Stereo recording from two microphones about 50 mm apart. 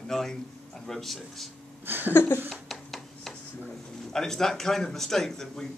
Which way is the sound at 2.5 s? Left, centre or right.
Centre.